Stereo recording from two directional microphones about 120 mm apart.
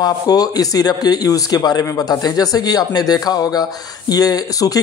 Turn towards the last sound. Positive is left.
turn(degrees=30)  # may be behind; listen again after turning